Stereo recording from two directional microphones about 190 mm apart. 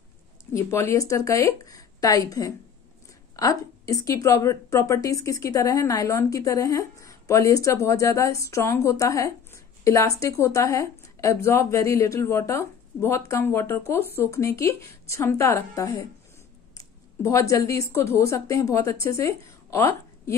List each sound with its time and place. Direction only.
0.5 s a woman's voice: 15° left (ahead or behind)